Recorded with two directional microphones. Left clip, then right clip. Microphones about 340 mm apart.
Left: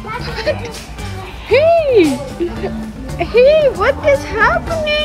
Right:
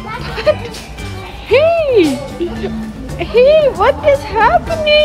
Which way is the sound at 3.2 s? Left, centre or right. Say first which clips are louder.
Even; right.